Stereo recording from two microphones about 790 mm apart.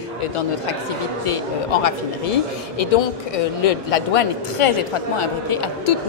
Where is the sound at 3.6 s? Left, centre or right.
Left.